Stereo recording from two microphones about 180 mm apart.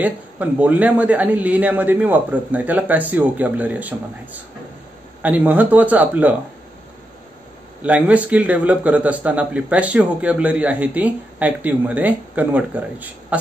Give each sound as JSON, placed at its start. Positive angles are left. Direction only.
{"t": 0.0, "sound": "speech", "side_deg": -10}
{"t": 7.8, "sound": "speech", "side_deg": -10}